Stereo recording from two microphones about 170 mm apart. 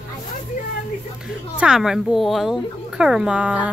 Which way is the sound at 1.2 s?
5° right (ahead or behind).